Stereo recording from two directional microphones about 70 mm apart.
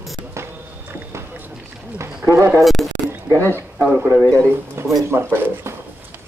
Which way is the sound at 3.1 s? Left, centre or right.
Right.